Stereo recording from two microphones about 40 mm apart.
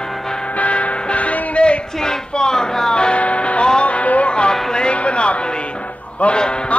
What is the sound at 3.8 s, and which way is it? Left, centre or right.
Music, left.